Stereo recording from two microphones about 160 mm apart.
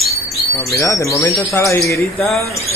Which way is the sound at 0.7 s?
20° left (ahead or behind).